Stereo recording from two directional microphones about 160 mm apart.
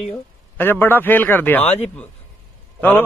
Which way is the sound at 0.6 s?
10° left (ahead or behind).